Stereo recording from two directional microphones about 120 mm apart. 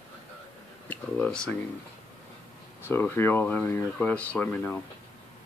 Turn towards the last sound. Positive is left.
turn(degrees=15)  # may be behind; listen again after turning